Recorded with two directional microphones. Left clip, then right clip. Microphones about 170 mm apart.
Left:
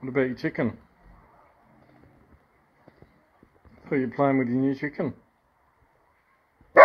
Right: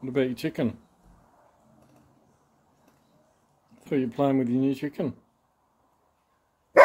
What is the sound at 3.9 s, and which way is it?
Speech, 20° right (ahead or behind).